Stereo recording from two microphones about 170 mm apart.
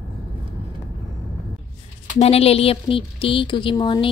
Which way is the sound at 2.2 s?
35° left (ahead or behind).